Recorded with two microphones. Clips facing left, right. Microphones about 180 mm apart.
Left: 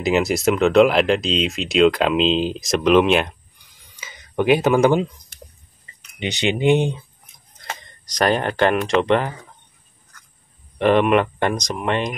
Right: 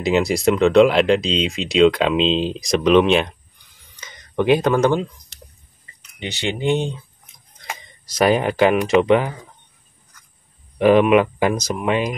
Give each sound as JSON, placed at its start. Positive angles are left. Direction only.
{"t": 0.0, "sound": "speech", "side_deg": 0}
{"t": 3.9, "sound": "a sound", "side_deg": 5}
{"t": 6.1, "sound": "speech", "side_deg": 20}
{"t": 7.6, "sound": "speech", "side_deg": -5}
{"t": 10.8, "sound": "speech", "side_deg": -5}